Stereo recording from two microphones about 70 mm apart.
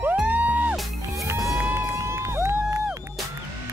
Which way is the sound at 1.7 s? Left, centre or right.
Right.